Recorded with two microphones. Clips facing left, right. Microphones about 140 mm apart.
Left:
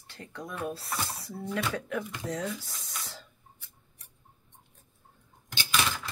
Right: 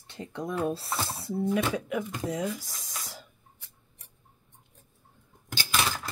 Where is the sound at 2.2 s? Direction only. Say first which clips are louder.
Right 3 dB; 10° right (ahead or behind).